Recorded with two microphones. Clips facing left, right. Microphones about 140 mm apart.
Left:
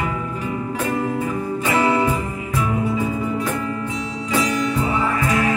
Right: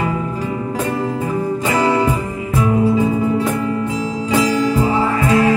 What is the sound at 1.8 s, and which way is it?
Music, 35° right (ahead or behind).